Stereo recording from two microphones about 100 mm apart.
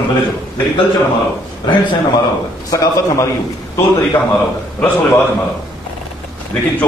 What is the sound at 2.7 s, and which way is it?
Speech, 35° left (ahead or behind).